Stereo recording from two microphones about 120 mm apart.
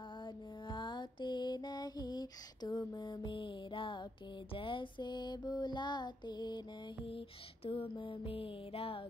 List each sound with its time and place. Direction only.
0.7 s mantra: 40° left (ahead or behind)
4.6 s music: 45° left (ahead or behind)
7.6 s music: 50° left (ahead or behind)